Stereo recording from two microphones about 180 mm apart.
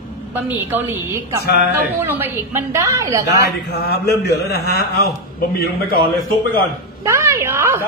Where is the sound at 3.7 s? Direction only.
65° left (ahead or behind).